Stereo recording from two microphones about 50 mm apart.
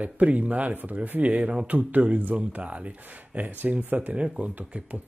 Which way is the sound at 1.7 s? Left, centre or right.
Right.